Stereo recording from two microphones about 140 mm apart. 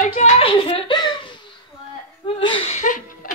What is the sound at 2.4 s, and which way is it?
Speech, 40° left (ahead or behind).